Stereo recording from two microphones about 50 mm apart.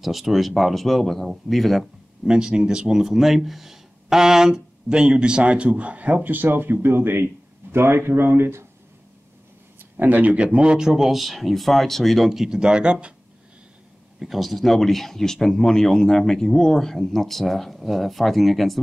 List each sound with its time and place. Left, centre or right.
0.0 s speech: centre
2.2 s speech: centre; by 8.6 s right
9.8 s speech: right
14.2 s speech: centre